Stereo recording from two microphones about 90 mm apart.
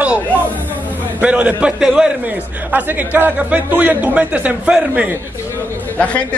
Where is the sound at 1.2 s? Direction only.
15° right (ahead or behind).